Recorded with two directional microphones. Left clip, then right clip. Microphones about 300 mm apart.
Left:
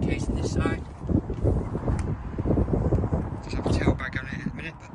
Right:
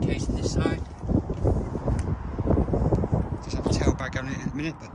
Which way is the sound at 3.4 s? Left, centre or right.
Centre.